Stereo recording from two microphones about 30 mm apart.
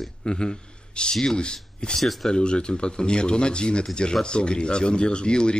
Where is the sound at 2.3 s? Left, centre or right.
Left.